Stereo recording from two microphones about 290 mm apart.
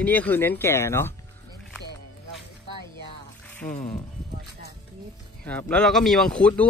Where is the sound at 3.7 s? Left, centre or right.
Left.